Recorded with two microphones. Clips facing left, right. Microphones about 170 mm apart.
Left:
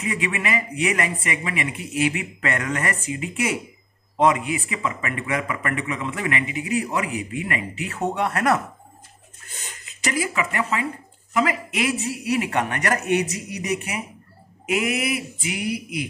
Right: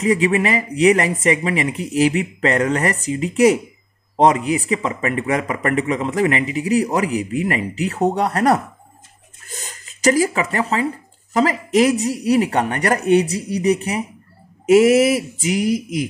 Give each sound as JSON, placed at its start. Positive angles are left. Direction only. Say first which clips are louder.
{"t": 0.0, "sound": "a man's voice", "louder": "right 10 dB", "side_deg": -35}
{"t": 9.6, "sound": "a man's voice", "louder": "right 9 dB", "side_deg": -40}